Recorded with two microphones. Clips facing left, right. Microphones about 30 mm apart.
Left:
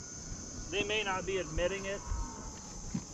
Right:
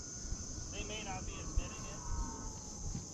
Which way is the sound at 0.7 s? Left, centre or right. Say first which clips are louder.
Left 12 dB; left.